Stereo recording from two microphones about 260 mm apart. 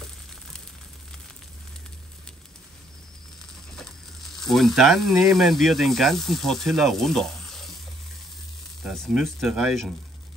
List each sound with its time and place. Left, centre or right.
4.4 s speech: centre
8.8 s speech: centre